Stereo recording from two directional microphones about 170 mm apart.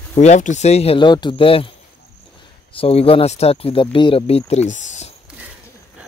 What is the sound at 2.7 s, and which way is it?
Speech, 35° left (ahead or behind).